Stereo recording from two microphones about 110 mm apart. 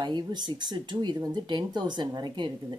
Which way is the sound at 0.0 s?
40° right (ahead or behind).